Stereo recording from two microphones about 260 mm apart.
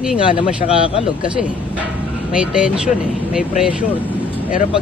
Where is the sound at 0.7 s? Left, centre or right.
Left.